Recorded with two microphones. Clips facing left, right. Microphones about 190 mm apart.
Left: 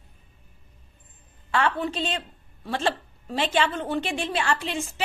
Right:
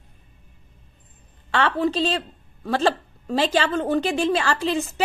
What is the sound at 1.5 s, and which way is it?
A woman's voice, 35° right (ahead or behind).